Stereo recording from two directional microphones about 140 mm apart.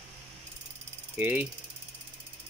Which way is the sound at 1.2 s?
10° right (ahead or behind).